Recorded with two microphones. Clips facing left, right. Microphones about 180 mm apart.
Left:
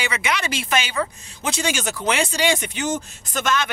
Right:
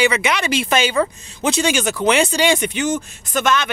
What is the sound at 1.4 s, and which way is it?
Speech, 90° right.